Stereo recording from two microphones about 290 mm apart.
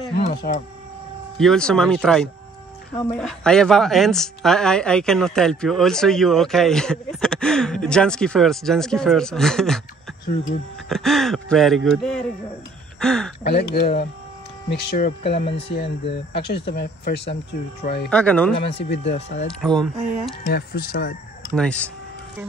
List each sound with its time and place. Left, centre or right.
0.1 s a sound: left
1.4 s speech: centre
10.2 s speech: left
10.9 s speech: centre
13.4 s speech: left
18.1 s speech: centre
18.8 s speech: left
19.1 s speech: left
19.6 s speech: centre
20.4 s speech: left
21.5 s speech: centre